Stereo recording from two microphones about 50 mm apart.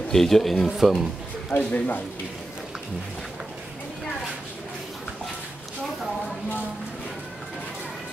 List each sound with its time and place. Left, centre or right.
0.1 s speech: centre
0.7 s speech: centre
1.5 s a man's voice: left